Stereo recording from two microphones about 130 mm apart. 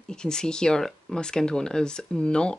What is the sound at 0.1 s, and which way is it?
Speech, 5° left (ahead or behind).